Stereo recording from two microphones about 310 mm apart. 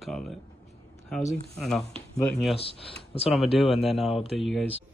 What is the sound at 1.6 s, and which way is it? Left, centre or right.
Speech, centre.